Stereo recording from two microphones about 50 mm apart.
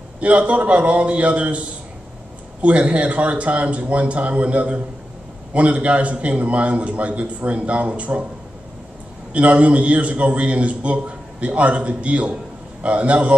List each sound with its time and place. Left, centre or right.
0.2 s a man's voice: right
2.6 s a man's voice: right
9.3 s a man's voice: right